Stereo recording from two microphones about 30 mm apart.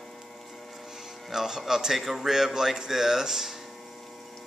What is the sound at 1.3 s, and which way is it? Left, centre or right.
Speech, centre.